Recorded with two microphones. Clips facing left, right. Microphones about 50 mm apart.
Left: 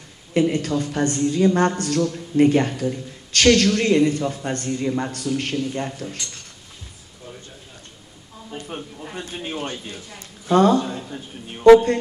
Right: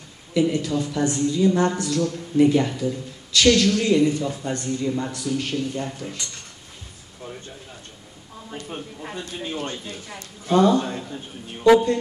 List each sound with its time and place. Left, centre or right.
0.3 s speech: left
5.1 s speech: left
8.6 s speech: centre
9.1 s speech: left
10.5 s speech: left